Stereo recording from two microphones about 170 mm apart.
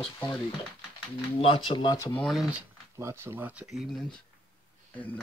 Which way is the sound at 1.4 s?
30° left (ahead or behind).